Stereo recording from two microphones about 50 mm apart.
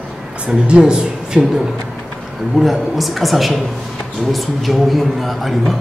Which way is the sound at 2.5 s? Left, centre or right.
Centre.